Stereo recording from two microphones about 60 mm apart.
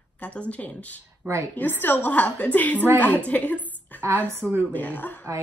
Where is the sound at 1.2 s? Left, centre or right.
Right.